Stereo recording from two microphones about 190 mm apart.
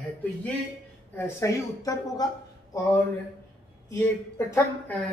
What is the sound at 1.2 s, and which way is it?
Speech, 15° left (ahead or behind).